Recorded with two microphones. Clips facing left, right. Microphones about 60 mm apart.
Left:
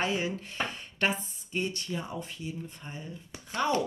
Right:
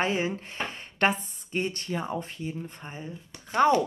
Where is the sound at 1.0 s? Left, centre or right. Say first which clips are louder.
Right 4 dB; right.